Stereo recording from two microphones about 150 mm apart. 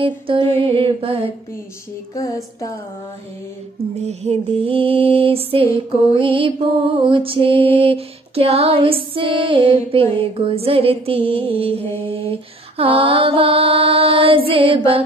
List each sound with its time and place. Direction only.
0.0 s music: 35° right (ahead or behind)
2.1 s female singing: 20° left (ahead or behind)
4.0 s music: 45° right (ahead or behind)